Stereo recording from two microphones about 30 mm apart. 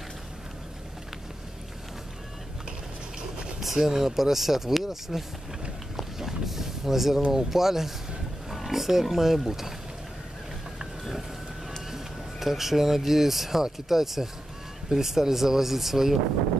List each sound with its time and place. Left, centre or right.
3.2 s a sound: right
3.6 s speech: centre
5.9 s boat: centre
7.3 s speech: centre
8.5 s wild animals: centre
9.1 s speech: centre
11.9 s speech: centre